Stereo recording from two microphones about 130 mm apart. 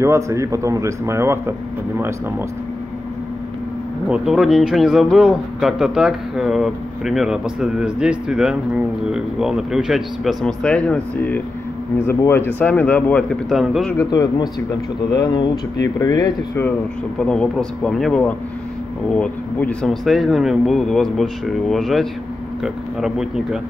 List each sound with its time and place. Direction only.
0.0 s speech: 20° right (ahead or behind)
4.1 s a man's voice: 5° right (ahead or behind)
13.9 s speech: 30° left (ahead or behind)
17.2 s a man's voice: 5° left (ahead or behind)